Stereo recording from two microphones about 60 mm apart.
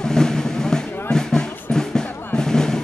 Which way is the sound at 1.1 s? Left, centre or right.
Centre.